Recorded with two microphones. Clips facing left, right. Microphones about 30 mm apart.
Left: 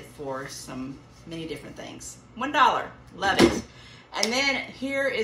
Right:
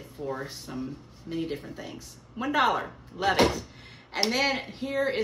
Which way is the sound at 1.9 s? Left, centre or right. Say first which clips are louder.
Right 1 dB; left.